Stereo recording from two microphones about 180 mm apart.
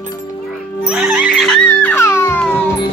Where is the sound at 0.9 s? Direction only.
5° right (ahead or behind).